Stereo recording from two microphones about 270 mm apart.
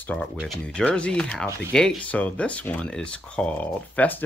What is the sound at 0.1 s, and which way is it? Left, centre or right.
Speech, centre.